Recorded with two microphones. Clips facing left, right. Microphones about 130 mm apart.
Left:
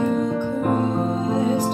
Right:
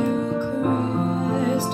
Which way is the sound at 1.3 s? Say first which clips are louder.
Left 2 dB; 15° left (ahead or behind).